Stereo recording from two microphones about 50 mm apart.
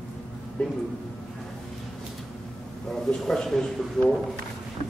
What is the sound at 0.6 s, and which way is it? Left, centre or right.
Speech, left.